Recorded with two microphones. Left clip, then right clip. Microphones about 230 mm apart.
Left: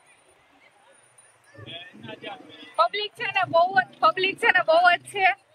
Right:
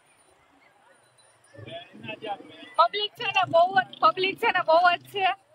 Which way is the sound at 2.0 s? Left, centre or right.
Right.